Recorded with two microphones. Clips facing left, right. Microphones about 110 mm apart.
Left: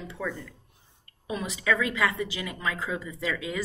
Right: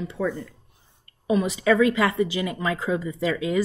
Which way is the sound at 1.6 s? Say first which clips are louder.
Right 5 dB; 40° right (ahead or behind).